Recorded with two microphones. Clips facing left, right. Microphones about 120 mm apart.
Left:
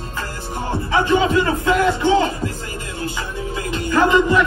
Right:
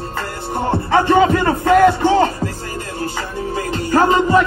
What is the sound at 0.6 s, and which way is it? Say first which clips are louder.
Music: right 3 dB; 55° right (ahead or behind).